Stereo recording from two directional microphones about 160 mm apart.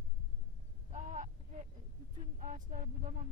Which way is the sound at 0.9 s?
50° right (ahead or behind).